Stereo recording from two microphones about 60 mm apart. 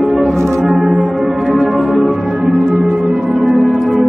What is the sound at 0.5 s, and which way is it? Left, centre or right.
Music, centre.